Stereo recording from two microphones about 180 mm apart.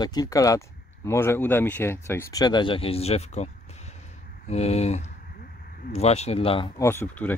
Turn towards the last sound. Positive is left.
turn(degrees=10)  # may be behind; listen again after turning